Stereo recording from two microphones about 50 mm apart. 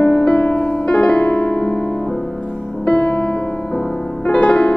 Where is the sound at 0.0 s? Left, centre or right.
Left.